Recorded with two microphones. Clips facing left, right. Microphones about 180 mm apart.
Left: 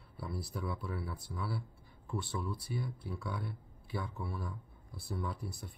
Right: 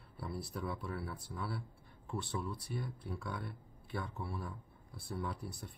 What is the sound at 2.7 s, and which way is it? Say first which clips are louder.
Speech: left 2 dB; centre (ahead or behind).